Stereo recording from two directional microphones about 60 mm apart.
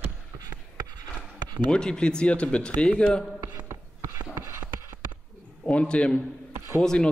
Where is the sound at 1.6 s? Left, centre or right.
Centre.